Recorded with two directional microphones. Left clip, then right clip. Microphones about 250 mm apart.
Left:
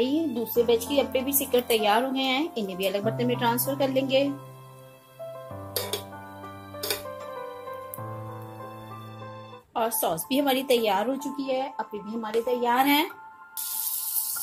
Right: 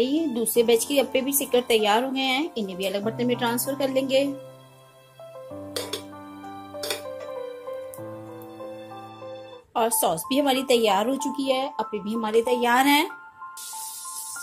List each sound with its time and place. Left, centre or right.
0.0 s a woman's voice: centre
9.8 s speech: centre